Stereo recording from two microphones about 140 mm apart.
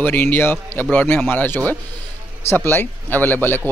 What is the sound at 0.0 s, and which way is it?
Speech, 15° left (ahead or behind).